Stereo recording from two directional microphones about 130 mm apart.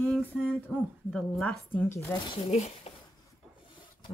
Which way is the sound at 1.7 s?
15° left (ahead or behind).